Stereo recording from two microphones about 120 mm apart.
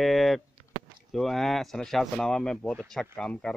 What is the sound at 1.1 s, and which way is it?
Speech, 5° left (ahead or behind).